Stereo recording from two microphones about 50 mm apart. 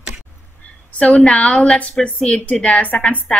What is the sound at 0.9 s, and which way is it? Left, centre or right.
A woman's voice, left.